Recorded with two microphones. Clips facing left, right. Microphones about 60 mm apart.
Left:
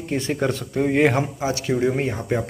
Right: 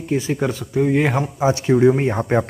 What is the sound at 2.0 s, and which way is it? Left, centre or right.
Speech, right.